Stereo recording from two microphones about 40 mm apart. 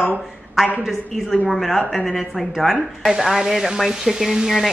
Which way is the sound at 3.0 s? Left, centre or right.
Centre.